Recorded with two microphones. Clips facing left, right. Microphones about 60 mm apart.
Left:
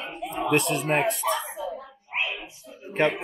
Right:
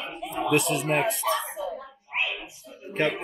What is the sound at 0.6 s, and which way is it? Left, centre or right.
Speech, centre.